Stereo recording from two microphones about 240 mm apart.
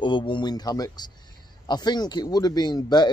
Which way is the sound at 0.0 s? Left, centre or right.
Centre.